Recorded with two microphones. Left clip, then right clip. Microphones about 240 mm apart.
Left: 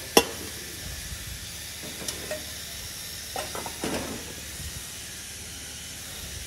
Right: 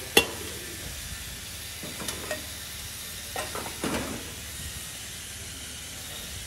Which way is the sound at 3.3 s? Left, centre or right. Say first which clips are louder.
Even; centre.